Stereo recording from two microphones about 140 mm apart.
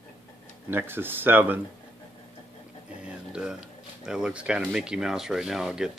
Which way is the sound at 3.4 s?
5° right (ahead or behind).